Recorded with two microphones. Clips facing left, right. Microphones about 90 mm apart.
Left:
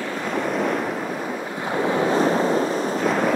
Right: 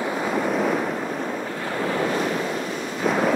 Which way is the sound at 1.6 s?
20° left (ahead or behind).